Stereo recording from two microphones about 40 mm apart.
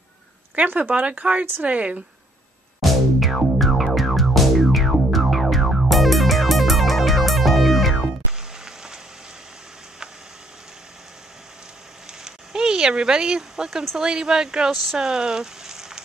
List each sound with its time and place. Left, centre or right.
0.7 s speech: right
2.8 s music: centre
8.3 s music: centre
12.3 s a sound: centre
13.9 s speech: centre